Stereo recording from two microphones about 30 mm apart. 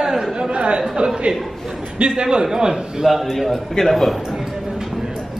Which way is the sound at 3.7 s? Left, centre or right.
Centre.